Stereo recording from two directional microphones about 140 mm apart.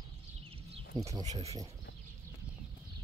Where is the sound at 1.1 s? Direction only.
25° right (ahead or behind).